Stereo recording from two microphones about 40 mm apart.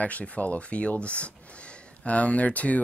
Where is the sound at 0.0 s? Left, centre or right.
Left.